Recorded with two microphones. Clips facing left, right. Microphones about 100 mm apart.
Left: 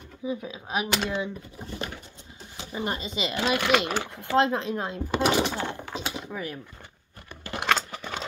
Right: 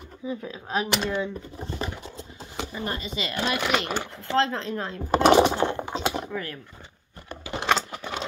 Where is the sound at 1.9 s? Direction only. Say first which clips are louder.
Right 6 dB; 85° right.